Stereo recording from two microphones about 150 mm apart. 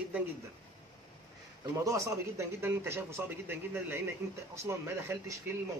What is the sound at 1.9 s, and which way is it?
Speech, 15° right (ahead or behind).